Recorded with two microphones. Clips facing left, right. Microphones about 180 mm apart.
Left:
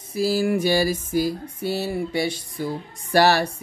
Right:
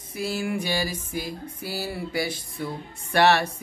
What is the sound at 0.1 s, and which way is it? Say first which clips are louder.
Speech: left 7 dB; 30° left (ahead or behind).